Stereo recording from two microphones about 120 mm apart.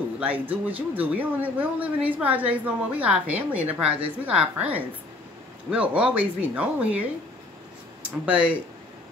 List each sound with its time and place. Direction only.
0.2 s a woman's voice: 15° right (ahead or behind)